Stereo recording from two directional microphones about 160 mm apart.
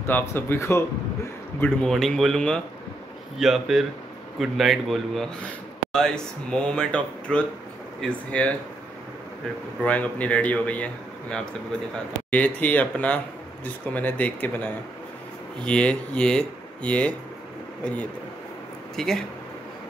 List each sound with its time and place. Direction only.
0.0 s a man's voice: 15° left (ahead or behind)
1.6 s a man's voice: 5° left (ahead or behind)
9.8 s a man's voice: 10° left (ahead or behind)
18.9 s speech: centre (ahead or behind)